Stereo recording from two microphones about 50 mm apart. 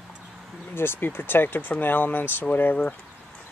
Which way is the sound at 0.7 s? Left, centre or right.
Left.